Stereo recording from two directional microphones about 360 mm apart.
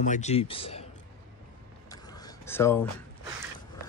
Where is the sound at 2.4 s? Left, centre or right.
Centre.